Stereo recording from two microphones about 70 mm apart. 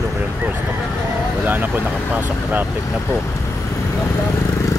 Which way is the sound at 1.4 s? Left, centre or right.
Right.